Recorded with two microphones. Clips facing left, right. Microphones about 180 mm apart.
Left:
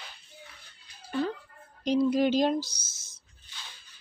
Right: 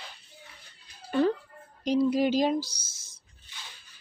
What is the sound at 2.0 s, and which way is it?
Speech, 5° right (ahead or behind).